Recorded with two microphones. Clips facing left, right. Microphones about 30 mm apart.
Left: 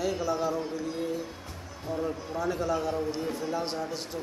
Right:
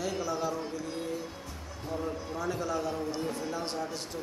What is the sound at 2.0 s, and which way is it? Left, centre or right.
Speech, centre.